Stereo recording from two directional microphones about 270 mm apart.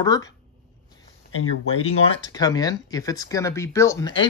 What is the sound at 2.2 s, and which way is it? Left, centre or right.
Speech, centre.